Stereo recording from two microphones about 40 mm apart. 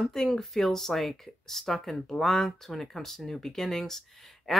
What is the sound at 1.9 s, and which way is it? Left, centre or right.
Speech, centre.